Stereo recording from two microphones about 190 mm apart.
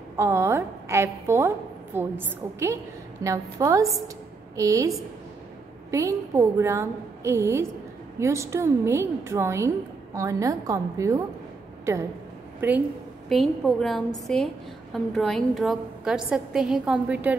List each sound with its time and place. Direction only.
0.2 s a woman's voice: 15° right (ahead or behind)
12.5 s a woman's voice: 10° right (ahead or behind)